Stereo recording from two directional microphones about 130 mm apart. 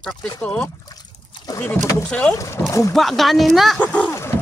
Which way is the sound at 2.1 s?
10° left (ahead or behind).